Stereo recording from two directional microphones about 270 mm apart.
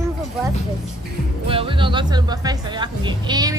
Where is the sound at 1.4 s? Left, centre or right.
Centre.